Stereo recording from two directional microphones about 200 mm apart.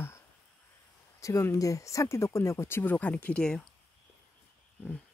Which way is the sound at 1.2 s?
15° left (ahead or behind).